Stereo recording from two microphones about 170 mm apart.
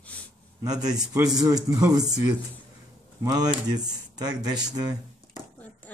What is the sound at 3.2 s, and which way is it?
Speech, 20° right (ahead or behind).